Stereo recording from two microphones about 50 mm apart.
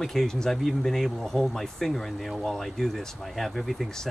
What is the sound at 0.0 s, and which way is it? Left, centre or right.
Speech, centre.